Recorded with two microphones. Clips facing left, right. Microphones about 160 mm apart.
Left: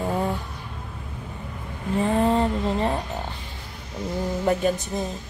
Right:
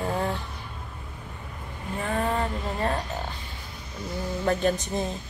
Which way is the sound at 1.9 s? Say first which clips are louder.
Left 6 dB; 25° left (ahead or behind).